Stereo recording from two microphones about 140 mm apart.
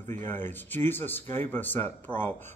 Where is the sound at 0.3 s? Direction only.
15° left (ahead or behind).